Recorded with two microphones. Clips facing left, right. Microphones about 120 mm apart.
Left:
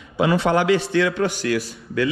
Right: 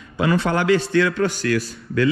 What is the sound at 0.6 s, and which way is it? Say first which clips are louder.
Speech: right 1 dB; 30° right (ahead or behind).